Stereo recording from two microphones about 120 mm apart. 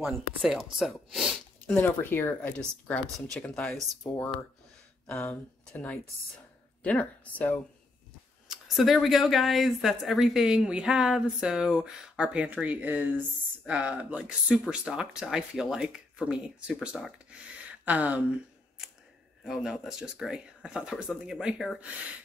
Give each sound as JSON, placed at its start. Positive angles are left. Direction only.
{"t": 0.0, "sound": "speech", "side_deg": -5}
{"t": 1.8, "sound": "speech", "side_deg": 15}
{"t": 5.1, "sound": "speech", "side_deg": 20}
{"t": 8.5, "sound": "speech", "side_deg": 0}
{"t": 19.4, "sound": "speech", "side_deg": 0}